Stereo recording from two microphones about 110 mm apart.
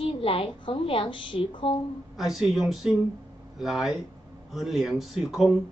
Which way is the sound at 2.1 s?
Centre (ahead or behind).